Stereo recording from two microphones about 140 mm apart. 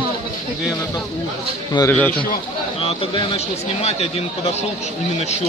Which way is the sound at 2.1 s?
90° left.